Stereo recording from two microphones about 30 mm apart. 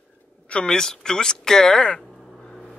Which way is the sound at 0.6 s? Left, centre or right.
Left.